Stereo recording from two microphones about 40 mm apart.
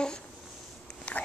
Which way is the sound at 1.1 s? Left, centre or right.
Left.